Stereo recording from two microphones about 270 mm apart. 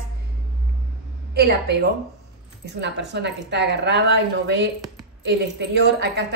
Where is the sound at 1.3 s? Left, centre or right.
Right.